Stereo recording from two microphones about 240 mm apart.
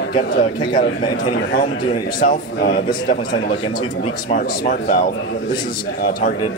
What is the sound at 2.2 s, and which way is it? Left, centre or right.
A man's voice, left.